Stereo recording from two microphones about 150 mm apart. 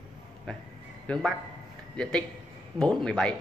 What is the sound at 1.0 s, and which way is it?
Speech, 5° left (ahead or behind).